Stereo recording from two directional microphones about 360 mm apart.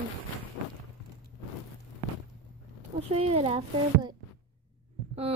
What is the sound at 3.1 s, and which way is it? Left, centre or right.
Speech, centre.